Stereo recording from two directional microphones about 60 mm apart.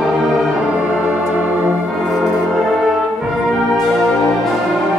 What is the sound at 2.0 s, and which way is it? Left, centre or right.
Music, centre.